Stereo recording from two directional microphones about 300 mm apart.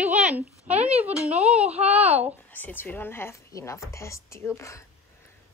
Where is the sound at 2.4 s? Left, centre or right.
Centre.